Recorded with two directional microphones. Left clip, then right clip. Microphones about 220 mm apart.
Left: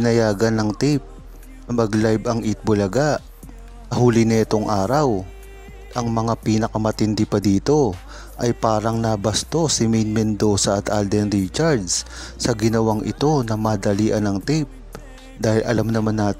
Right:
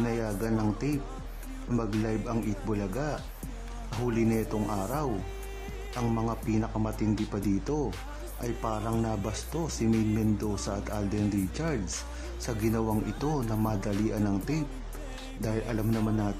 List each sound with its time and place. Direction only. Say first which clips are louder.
0.0 s speech: left 14 dB; 40° left (ahead or behind)